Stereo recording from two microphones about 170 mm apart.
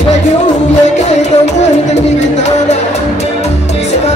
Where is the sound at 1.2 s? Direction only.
40° left (ahead or behind).